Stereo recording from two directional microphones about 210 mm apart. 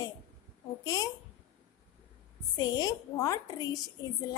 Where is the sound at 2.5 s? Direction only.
20° left (ahead or behind).